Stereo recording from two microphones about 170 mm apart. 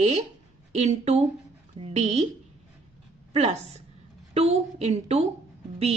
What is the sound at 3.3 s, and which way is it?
A woman's voice, 40° right (ahead or behind).